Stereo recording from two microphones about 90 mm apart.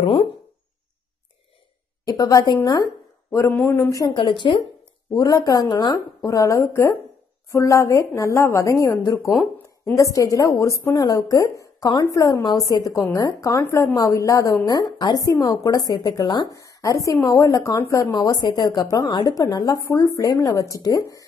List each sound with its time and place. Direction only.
0.0 s speech: 85° left
2.0 s a woman's voice: 45° left (ahead or behind)
3.3 s speech: 30° left (ahead or behind)
4.1 s speech: 70° left (ahead or behind)
5.1 s a woman's voice: 40° left (ahead or behind)
6.2 s a woman's voice: 40° left (ahead or behind)
16.5 s a woman's voice: 35° left (ahead or behind)
18.1 s a woman's voice: 50° left (ahead or behind)